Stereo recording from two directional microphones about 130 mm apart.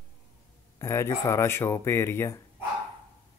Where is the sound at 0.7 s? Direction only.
25° left (ahead or behind).